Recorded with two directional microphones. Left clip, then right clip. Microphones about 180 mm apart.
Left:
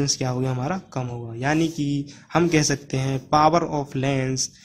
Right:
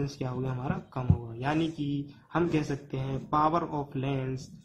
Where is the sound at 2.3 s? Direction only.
50° left (ahead or behind).